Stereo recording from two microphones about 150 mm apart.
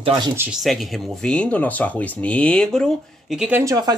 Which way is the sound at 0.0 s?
35° right (ahead or behind).